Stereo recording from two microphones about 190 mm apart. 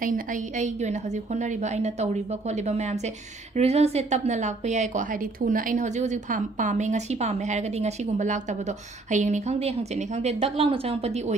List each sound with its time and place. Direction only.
0.0 s a woman's voice: 45° right (ahead or behind)